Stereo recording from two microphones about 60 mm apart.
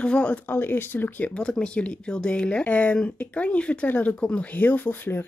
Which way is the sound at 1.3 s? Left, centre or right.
Centre.